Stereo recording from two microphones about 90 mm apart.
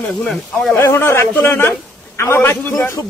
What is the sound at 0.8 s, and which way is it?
A man's voice, 30° left (ahead or behind).